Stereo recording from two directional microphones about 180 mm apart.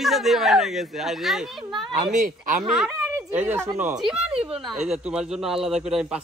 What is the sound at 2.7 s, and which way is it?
Speech, 5° right (ahead or behind).